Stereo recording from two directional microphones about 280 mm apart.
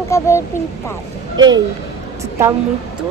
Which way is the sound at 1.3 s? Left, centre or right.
Centre.